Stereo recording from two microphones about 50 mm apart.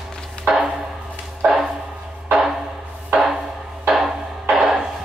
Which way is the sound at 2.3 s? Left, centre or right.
Centre.